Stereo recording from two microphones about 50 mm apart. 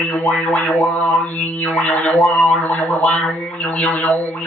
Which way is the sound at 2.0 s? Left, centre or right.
Centre.